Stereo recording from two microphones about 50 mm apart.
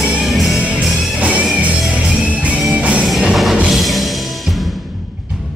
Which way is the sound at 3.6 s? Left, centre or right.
Centre.